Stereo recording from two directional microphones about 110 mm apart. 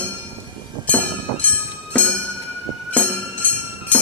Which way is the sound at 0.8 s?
15° left (ahead or behind).